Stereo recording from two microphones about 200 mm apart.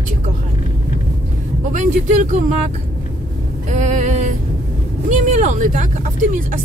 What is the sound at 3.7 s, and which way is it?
Speech, 35° right (ahead or behind).